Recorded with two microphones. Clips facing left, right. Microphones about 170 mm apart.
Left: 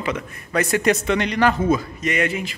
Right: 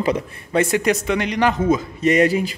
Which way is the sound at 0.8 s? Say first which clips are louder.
Even; 10° right (ahead or behind).